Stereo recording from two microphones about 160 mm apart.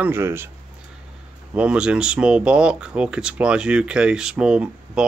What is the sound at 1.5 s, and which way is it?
Speech, 5° right (ahead or behind).